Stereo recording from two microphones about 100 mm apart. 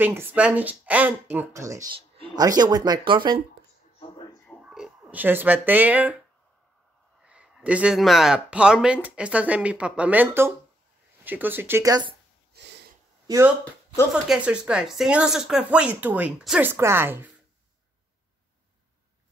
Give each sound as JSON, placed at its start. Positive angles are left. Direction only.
{"t": 0.0, "sound": "speech", "side_deg": -20}
{"t": 2.3, "sound": "speech", "side_deg": -40}
{"t": 4.6, "sound": "a sound", "side_deg": -5}
{"t": 5.1, "sound": "speech", "side_deg": -20}
{"t": 7.2, "sound": "a sound", "side_deg": -10}
{"t": 8.0, "sound": "speech", "side_deg": 0}
{"t": 11.8, "sound": "speech", "side_deg": -40}
{"t": 14.2, "sound": "speech", "side_deg": -5}